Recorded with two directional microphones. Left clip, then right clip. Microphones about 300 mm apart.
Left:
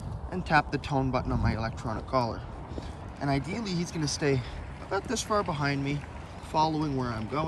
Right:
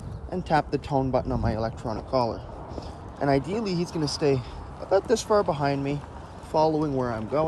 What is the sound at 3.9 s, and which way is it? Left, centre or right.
Speech, centre.